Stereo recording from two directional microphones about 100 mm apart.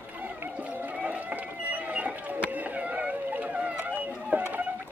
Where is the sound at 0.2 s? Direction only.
15° right (ahead or behind).